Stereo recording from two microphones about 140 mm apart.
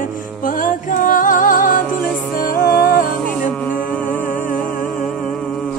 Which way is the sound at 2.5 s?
90° left.